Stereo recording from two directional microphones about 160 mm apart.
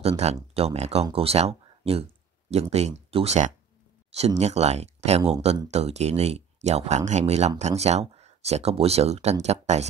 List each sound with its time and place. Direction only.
0.2 s speech: 40° right (ahead or behind)